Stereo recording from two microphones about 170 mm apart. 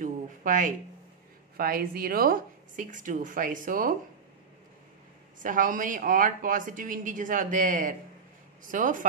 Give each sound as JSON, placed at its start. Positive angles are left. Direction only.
{"t": 0.0, "sound": "a sound", "side_deg": -50}
{"t": 1.6, "sound": "speech", "side_deg": -60}
{"t": 5.4, "sound": "speech", "side_deg": -50}